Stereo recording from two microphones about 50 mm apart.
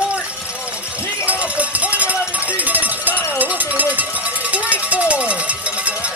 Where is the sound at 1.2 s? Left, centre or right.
Right.